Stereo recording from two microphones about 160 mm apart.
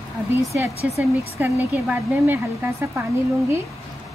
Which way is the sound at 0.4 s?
20° right (ahead or behind).